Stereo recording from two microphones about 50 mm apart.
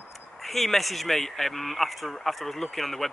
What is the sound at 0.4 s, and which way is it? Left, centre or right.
Speech, centre.